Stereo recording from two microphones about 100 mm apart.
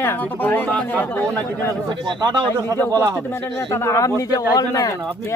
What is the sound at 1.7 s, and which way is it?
Speech, 45° right (ahead or behind).